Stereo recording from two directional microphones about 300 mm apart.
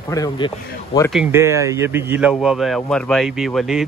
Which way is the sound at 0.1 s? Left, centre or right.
Centre.